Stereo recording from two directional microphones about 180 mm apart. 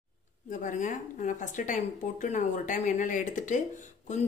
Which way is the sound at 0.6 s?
45° left (ahead or behind).